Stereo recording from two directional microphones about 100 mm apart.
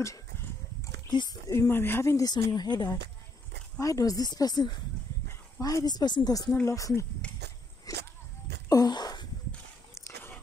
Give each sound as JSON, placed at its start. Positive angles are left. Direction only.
{"t": 1.5, "sound": "speech", "side_deg": 25}
{"t": 2.2, "sound": "speech", "side_deg": 45}
{"t": 3.8, "sound": "speech", "side_deg": 35}
{"t": 6.5, "sound": "speech", "side_deg": 30}
{"t": 7.9, "sound": "walk", "side_deg": 35}
{"t": 8.6, "sound": "a sound", "side_deg": 40}
{"t": 9.9, "sound": "a sound", "side_deg": 25}